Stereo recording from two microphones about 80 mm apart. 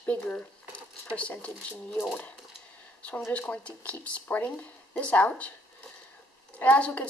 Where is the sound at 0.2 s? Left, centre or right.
Centre.